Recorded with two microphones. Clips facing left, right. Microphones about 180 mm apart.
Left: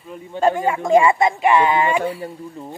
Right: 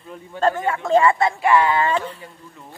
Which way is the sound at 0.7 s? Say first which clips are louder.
Left 2 dB; 15° left (ahead or behind).